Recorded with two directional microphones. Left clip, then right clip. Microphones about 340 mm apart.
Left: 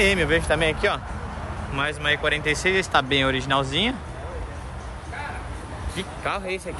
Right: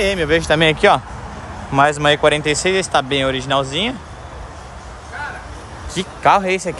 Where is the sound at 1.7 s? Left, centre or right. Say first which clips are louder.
Right 11 dB; centre.